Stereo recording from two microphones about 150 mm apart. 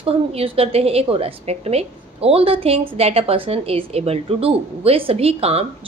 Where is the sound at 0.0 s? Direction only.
40° right (ahead or behind).